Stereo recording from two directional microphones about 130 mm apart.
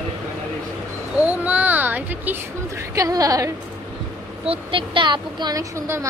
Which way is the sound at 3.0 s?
30° right (ahead or behind).